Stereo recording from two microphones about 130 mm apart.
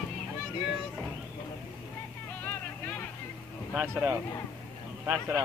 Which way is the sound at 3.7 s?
15° right (ahead or behind).